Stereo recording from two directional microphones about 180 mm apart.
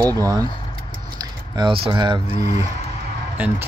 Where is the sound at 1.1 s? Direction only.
25° right (ahead or behind).